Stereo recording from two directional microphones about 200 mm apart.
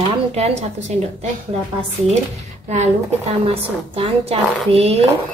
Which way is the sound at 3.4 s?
30° right (ahead or behind).